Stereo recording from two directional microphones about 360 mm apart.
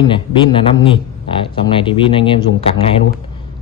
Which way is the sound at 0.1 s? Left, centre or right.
Centre.